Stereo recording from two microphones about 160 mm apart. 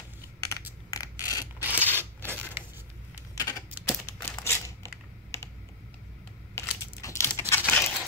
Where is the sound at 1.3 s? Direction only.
25° left (ahead or behind).